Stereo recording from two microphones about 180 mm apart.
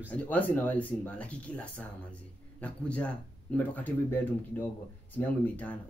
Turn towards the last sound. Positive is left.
turn(degrees=10)  # may be behind; listen again after turning